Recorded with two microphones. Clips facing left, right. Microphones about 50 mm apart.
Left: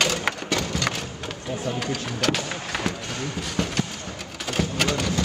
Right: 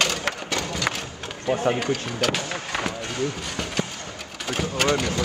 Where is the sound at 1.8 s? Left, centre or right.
Centre.